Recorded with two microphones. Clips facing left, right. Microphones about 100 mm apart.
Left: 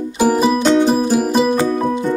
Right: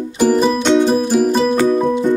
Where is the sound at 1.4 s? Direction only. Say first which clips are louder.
Right 1 dB; 15° left (ahead or behind).